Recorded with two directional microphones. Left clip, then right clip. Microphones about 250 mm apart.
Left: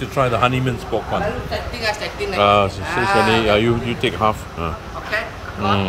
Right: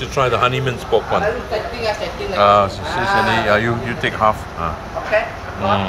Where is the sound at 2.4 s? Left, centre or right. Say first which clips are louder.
Right 2 dB; left.